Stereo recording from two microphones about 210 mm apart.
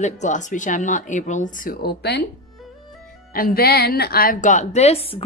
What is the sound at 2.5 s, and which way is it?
Music, centre (ahead or behind).